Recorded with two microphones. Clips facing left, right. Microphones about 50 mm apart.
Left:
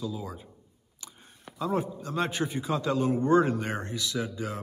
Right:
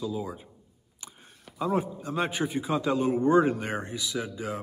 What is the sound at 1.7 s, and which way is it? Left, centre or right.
A man's voice, centre.